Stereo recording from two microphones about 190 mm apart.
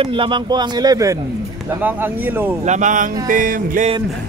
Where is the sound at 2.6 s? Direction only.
40° right (ahead or behind).